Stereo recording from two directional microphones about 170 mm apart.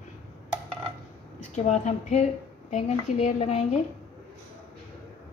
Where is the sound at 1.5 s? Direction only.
45° left (ahead or behind).